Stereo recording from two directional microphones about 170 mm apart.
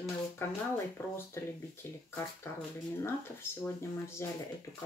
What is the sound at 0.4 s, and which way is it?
Speech, 15° left (ahead or behind).